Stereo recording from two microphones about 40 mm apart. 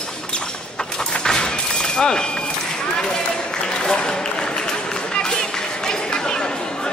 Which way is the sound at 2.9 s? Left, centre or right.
Centre.